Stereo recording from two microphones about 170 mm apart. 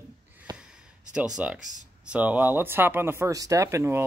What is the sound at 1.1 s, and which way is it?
Speech, 5° right (ahead or behind).